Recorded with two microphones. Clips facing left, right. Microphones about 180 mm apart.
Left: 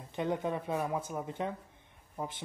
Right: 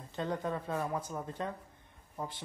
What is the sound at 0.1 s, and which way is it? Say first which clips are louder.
A man's voice: left 2 dB; 20° left (ahead or behind).